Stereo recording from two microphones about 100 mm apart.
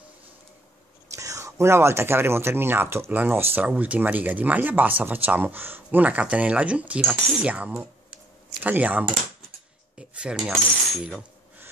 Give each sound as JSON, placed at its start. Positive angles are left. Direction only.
{"t": 1.1, "sound": "speech", "side_deg": -30}
{"t": 9.9, "sound": "cutlery", "side_deg": -10}